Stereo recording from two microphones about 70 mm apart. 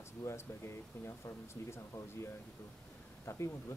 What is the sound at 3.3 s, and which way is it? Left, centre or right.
Speech, left.